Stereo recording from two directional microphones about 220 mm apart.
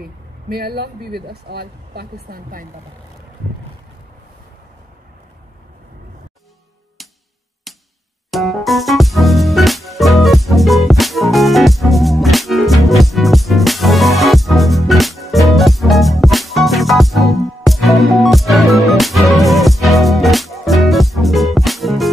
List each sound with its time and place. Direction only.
0.5 s speech: 45° right (ahead or behind)
7.7 s music: centre (ahead or behind)